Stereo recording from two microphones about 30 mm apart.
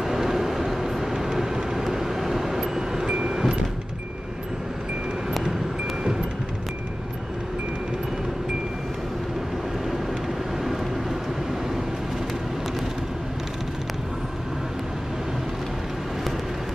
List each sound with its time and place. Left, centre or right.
0.0 s vehicle: centre
3.1 s vehicle: right